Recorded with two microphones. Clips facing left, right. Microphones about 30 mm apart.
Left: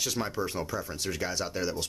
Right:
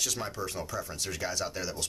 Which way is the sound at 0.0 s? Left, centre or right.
Centre.